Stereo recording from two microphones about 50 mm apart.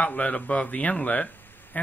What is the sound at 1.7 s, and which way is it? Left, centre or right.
Quack, left.